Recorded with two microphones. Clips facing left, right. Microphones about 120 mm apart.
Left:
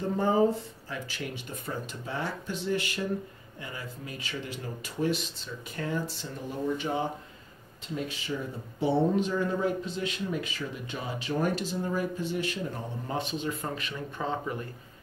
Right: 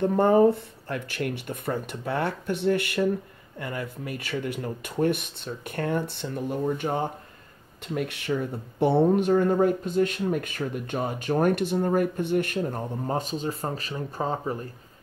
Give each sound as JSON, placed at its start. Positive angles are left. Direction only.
{"t": 0.0, "sound": "speech", "side_deg": -60}
{"t": 7.9, "sound": "speech", "side_deg": -65}